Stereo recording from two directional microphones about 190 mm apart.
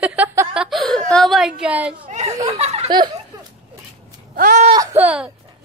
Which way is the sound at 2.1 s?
35° right (ahead or behind).